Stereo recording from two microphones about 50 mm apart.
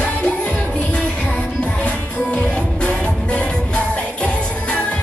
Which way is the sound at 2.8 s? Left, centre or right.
Left.